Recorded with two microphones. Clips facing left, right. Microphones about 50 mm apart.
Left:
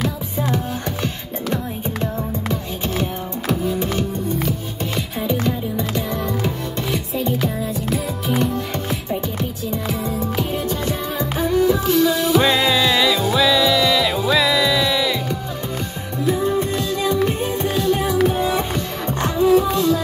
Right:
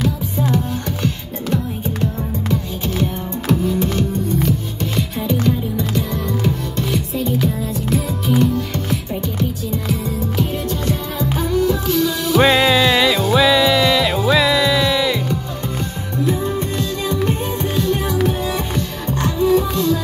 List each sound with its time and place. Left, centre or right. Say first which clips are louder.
0.0 s music: right 2 dB; centre
1.0 s music: right 2 dB; left
3.4 s music: right 3 dB; centre
8.9 s music: right 1 dB; left
12.4 s music: right 6 dB; right
13.9 s music: right 2 dB; centre
16.3 s music: left 3 dB; centre